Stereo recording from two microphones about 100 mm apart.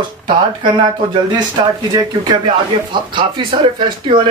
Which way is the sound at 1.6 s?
45° right (ahead or behind).